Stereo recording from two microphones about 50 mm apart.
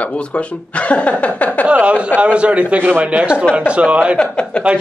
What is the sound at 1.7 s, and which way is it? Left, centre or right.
Speech, right.